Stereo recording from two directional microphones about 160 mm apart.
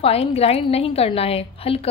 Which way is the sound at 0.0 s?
40° left (ahead or behind).